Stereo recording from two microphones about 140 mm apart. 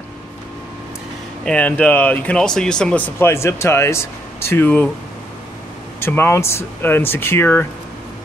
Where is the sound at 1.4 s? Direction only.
10° left (ahead or behind).